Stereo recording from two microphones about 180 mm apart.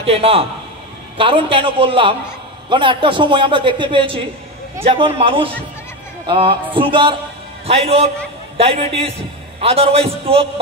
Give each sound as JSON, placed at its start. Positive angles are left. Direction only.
{"t": 0.0, "sound": "a man's voice", "side_deg": -35}